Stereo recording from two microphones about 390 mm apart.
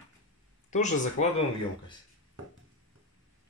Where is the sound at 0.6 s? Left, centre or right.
Centre.